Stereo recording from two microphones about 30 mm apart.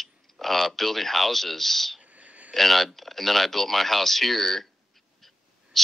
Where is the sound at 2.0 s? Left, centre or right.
Right.